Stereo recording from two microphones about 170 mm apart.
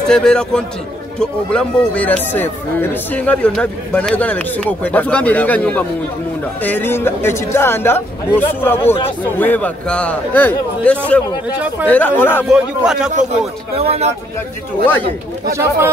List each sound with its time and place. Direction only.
0.1 s a man's voice: 5° left (ahead or behind)
12.4 s a man's voice: 5° right (ahead or behind)
13.1 s a man's voice: 40° right (ahead or behind)
15.5 s speech: 15° right (ahead or behind)